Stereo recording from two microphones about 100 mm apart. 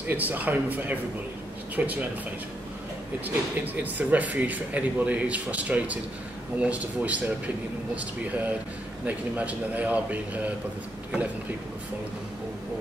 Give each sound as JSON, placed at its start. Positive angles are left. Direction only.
{"t": 0.0, "sound": "speech", "side_deg": -15}
{"t": 3.3, "sound": "speech", "side_deg": -15}